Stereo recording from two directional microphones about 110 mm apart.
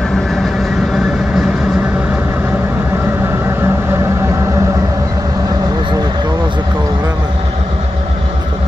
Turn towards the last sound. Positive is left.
turn(degrees=-35)  # may be behind; listen again after turning